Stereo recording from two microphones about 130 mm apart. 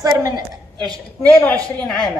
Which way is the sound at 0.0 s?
25° right (ahead or behind).